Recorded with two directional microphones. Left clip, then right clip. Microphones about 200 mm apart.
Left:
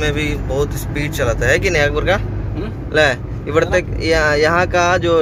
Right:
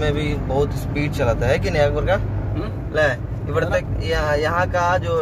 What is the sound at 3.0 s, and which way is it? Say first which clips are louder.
Speech: left 5 dB; 45° left (ahead or behind).